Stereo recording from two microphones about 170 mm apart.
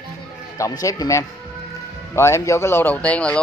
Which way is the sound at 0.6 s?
20° left (ahead or behind).